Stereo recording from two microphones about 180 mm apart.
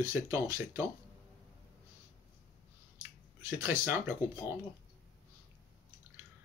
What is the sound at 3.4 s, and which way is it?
Speech, 15° right (ahead or behind).